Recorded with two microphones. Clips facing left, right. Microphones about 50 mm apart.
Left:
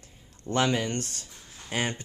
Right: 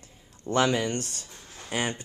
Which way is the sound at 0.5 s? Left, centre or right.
Centre.